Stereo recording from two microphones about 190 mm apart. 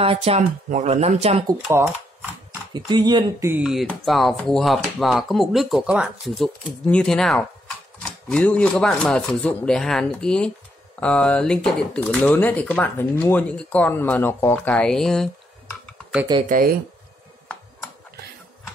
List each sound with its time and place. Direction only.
0.0 s speech: 30° right (ahead or behind)
1.5 s speech: 15° right (ahead or behind); by 15.2 s 5° left (ahead or behind)
16.4 s speech: 45° right (ahead or behind)